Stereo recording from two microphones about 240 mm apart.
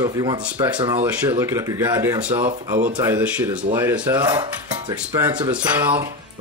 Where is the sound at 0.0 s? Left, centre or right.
Centre.